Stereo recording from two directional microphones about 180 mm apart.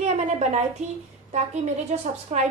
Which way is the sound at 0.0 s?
40° right (ahead or behind).